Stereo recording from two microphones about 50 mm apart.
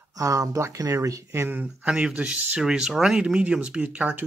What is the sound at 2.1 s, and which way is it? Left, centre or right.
Speech, right.